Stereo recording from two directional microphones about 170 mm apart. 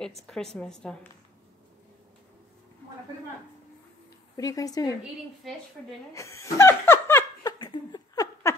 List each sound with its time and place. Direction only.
0.3 s a woman's voice: 5° left (ahead or behind)
4.4 s speech: 20° left (ahead or behind)
5.0 s a woman's voice: centre (ahead or behind)
6.1 s laughter: 15° left (ahead or behind)
7.5 s laughter: 25° left (ahead or behind)